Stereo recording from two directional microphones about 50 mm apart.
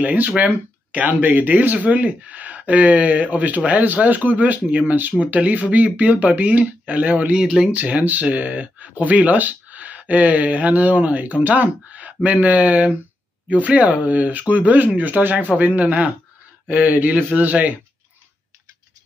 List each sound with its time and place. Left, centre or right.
0.0 s speech: right
7.3 s speech: centre
7.7 s speech: right